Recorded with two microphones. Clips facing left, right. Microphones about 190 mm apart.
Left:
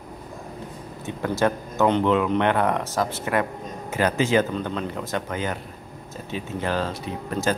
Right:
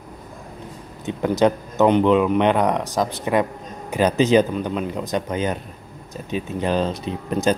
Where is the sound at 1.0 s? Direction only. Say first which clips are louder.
Right 5 dB; 20° right (ahead or behind).